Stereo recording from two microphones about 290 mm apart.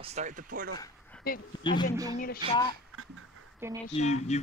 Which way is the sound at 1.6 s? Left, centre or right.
Centre.